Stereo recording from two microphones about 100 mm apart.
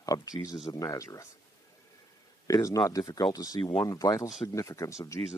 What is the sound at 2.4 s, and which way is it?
Speech, 35° left (ahead or behind).